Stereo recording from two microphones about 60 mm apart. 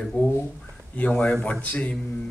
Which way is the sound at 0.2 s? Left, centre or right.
Left.